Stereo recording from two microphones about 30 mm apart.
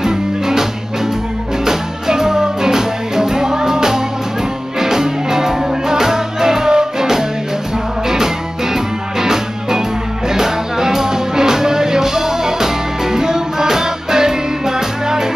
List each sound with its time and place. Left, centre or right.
0.0 s music: centre
1.7 s music: centre
9.2 s music: centre